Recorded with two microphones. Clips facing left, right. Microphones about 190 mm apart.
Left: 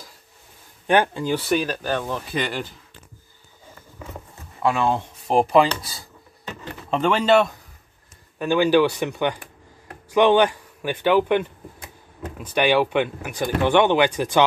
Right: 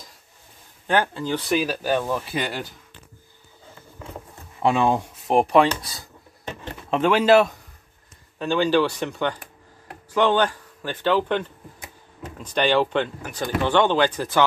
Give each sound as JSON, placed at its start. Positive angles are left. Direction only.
{"t": 0.8, "sound": "speech", "side_deg": 15}
{"t": 1.5, "sound": "speech", "side_deg": -5}
{"t": 4.6, "sound": "speech", "side_deg": -15}
{"t": 5.3, "sound": "speech", "side_deg": 0}
{"t": 8.4, "sound": "speech", "side_deg": 10}